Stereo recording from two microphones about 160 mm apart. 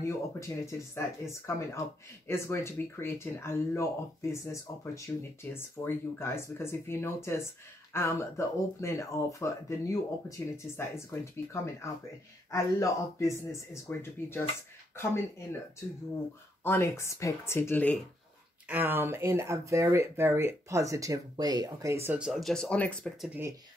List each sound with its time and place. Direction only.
0.1 s speech: 15° left (ahead or behind)
16.6 s speech: 15° left (ahead or behind)
18.7 s speech: 10° right (ahead or behind); by 23.3 s 5° left (ahead or behind)